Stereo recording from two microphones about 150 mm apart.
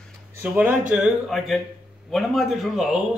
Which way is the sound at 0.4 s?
10° right (ahead or behind).